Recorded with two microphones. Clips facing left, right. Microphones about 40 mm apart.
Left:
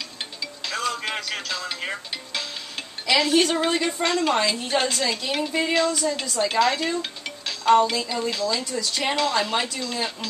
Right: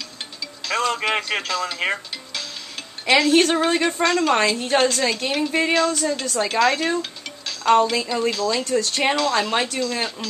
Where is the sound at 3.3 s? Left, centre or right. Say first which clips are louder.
Right 3 dB; right.